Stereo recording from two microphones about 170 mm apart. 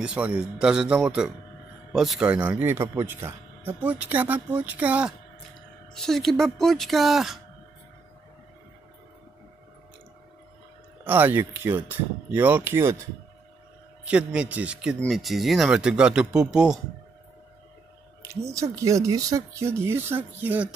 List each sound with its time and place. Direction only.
0.0 s speech: 5° right (ahead or behind)
11.1 s speech: 10° right (ahead or behind)
14.0 s speech: 5° right (ahead or behind)
18.5 s speech: 20° right (ahead or behind)